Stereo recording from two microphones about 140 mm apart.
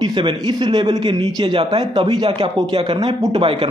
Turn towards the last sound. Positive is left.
turn(degrees=-40)  # may be behind; listen again after turning